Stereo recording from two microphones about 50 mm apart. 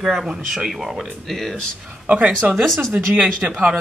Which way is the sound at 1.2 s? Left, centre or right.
Centre.